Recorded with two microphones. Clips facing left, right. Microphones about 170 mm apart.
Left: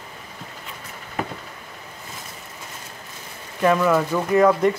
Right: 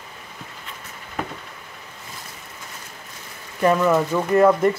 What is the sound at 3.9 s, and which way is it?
Speech, 5° right (ahead or behind).